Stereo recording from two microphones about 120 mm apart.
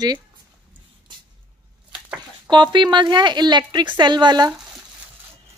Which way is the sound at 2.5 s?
40° right (ahead or behind).